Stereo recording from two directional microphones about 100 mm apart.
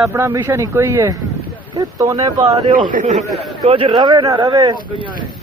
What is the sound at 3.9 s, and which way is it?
Speech, 45° right (ahead or behind).